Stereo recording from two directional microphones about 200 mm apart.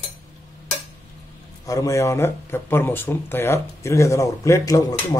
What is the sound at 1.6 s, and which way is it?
Speech, 15° left (ahead or behind).